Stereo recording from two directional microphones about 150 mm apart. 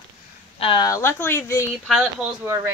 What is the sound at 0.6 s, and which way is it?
Speech, 35° left (ahead or behind).